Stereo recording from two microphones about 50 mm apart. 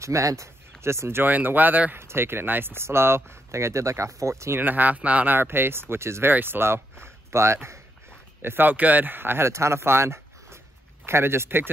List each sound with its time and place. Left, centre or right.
0.0 s speech: right
1.2 s speech: right
2.0 s speech: right
4.6 s speech: right
5.4 s speech: right
6.3 s speech: right
8.4 s speech: right
9.5 s speech: right